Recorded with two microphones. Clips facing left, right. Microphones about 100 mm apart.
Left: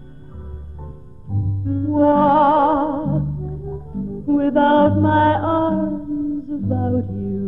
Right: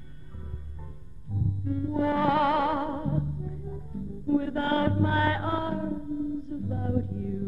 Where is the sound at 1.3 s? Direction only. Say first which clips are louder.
Left 8 dB; 50° left (ahead or behind).